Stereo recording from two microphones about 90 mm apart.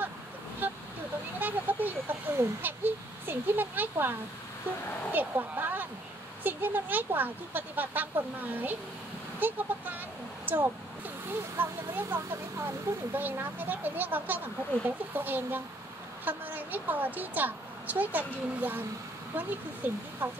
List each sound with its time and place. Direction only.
0.6 s vehicle: 20° right (ahead or behind)
1.4 s a sound: 20° right (ahead or behind)
5.1 s speech: 20° right (ahead or behind)